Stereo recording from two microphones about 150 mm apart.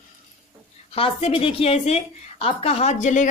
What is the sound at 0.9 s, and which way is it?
A woman's voice, 40° left (ahead or behind).